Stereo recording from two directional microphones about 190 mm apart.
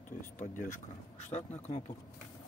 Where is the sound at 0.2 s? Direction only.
40° left (ahead or behind).